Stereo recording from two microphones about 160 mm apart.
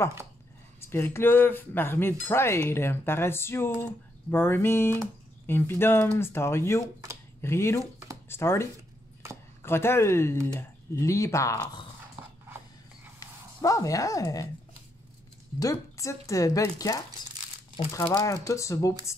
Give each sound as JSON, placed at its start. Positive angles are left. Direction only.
{"t": 0.7, "sound": "speech", "side_deg": 15}
{"t": 7.8, "sound": "a sound", "side_deg": -20}
{"t": 8.3, "sound": "speech", "side_deg": 15}
{"t": 13.2, "sound": "speech", "side_deg": 20}
{"t": 15.6, "sound": "speech", "side_deg": 20}